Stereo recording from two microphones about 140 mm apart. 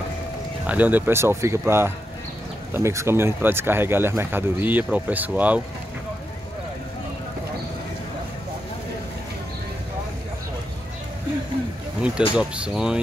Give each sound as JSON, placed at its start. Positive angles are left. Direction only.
{"t": 0.7, "sound": "speech", "side_deg": -10}
{"t": 12.0, "sound": "speech", "side_deg": -5}